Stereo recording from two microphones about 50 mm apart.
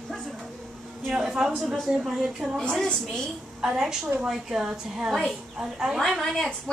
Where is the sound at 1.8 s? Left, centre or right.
Centre.